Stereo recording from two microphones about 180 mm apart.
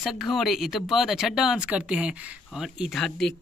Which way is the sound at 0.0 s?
Centre (ahead or behind).